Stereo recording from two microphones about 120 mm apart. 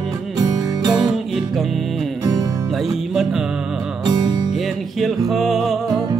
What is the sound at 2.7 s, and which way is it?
Music, centre (ahead or behind).